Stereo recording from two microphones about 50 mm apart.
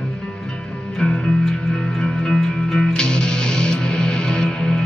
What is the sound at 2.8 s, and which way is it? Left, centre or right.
Music, centre.